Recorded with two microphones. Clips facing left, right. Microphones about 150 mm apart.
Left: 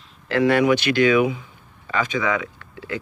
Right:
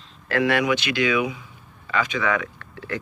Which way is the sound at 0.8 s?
50° left (ahead or behind).